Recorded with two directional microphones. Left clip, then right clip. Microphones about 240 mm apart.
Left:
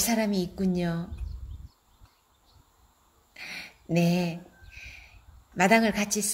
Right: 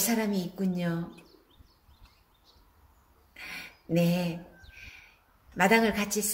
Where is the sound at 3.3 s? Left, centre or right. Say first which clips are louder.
Left 2 dB; left.